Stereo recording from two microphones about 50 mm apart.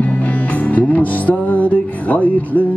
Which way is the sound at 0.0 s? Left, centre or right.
Left.